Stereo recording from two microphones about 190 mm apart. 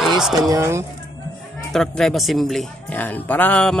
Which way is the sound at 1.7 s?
Centre (ahead or behind).